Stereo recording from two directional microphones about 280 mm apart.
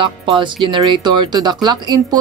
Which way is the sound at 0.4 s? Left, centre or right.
Centre.